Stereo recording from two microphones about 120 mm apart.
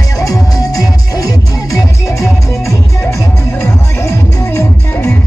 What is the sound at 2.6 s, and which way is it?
Music, 25° left (ahead or behind).